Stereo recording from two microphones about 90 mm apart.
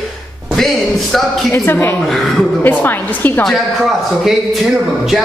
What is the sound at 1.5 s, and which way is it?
Speech, 30° left (ahead or behind).